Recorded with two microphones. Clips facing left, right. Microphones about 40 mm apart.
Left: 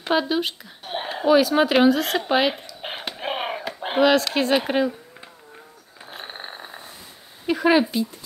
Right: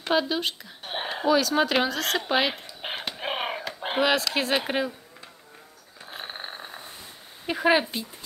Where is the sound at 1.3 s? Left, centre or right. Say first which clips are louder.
Left 5 dB; centre.